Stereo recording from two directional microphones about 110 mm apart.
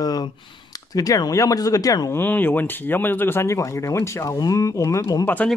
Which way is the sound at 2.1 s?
15° left (ahead or behind).